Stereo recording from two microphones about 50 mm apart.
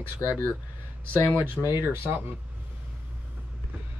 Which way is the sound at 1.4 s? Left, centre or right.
Right.